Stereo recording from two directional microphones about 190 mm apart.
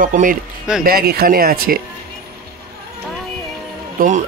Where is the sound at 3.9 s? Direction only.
40° right (ahead or behind).